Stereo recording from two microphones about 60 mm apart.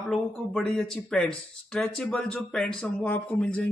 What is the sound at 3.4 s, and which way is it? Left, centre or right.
Speech, centre.